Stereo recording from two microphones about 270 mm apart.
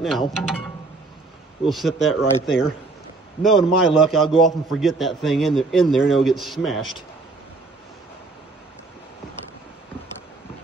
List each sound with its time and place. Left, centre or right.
0.3 s a man's voice: centre